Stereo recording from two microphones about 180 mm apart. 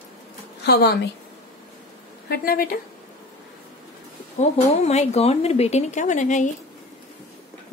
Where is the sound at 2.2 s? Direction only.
55° left (ahead or behind).